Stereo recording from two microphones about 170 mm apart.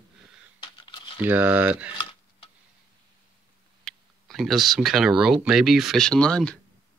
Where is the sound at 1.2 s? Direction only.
10° right (ahead or behind).